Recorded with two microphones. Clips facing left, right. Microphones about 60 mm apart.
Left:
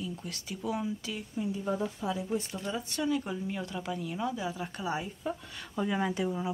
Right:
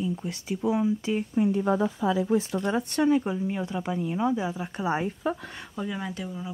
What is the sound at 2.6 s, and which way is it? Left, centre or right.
Speech, right.